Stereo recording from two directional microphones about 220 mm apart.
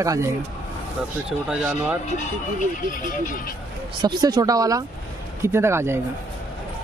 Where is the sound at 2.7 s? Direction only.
40° left (ahead or behind).